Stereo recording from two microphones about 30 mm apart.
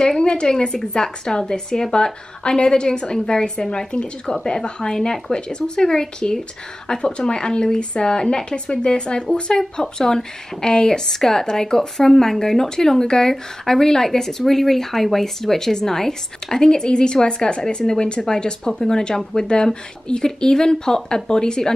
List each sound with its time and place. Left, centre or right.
0.0 s speech: left
9.3 s speech: left